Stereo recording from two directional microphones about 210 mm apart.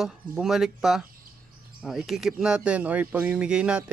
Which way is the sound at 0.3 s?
Centre (ahead or behind).